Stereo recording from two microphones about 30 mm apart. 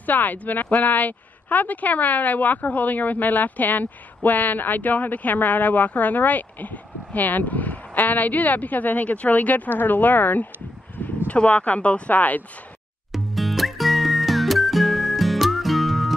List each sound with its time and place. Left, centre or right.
0.0 s a woman's voice: left
11.0 s a sound: left
11.4 s speech: left
12.2 s a woman's voice: left
13.1 s music: centre